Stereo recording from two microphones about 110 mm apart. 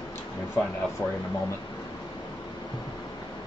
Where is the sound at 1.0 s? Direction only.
25° left (ahead or behind).